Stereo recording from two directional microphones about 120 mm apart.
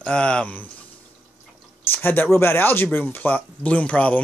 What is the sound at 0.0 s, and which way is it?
Speech, 10° left (ahead or behind).